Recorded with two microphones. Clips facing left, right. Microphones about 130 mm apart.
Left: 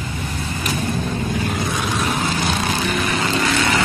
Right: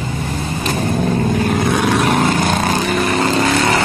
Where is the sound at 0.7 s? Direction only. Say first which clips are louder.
Right 7 dB; 50° right (ahead or behind).